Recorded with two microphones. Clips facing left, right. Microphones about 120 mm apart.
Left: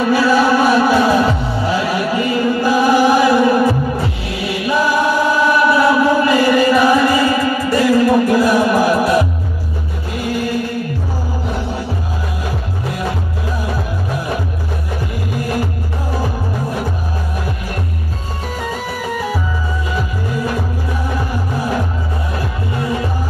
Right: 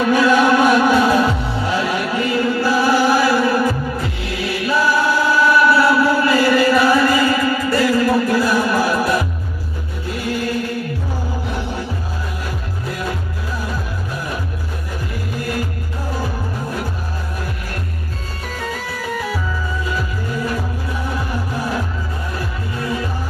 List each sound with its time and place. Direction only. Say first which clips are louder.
0.0 s music: left 1 dB; 10° left (ahead or behind)
4.6 s choir: left 2 dB; 20° left (ahead or behind)